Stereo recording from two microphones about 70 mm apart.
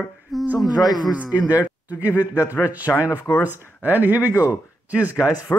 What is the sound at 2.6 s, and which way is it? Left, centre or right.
Speech, right.